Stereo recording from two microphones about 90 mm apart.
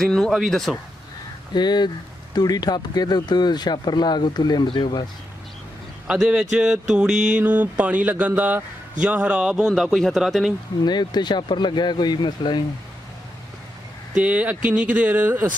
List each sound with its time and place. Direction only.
0.0 s speech: 5° left (ahead or behind)
1.5 s speech: 55° left (ahead or behind)
4.6 s speech: 65° left (ahead or behind)
6.0 s a sound: 10° right (ahead or behind)
10.8 s speech: 50° left (ahead or behind)
14.1 s a sound: 15° right (ahead or behind)